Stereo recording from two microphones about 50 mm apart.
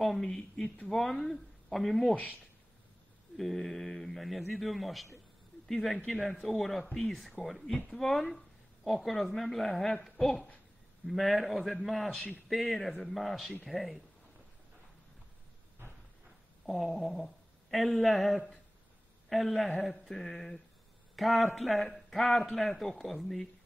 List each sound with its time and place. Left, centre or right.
0.0 s a man's voice: centre
3.3 s a man's voice: centre
15.8 s a sound: right
16.6 s a man's voice: centre